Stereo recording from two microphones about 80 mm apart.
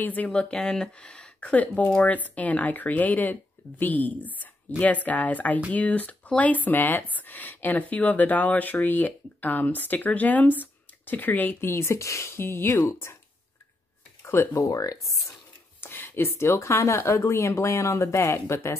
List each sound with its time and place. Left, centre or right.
0.0 s speech: left
0.3 s speech: centre; by 13.2 s left
14.2 s speech: left
14.5 s speech: left
15.8 s speech: left